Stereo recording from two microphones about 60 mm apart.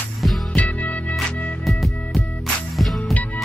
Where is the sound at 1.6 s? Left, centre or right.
Centre.